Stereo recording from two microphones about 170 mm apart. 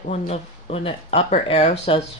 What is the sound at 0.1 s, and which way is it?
Speech, 35° left (ahead or behind).